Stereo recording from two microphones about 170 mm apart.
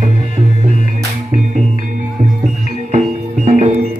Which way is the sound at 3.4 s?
50° right (ahead or behind).